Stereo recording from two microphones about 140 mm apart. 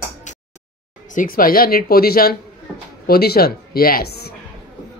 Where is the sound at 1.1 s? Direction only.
90° left.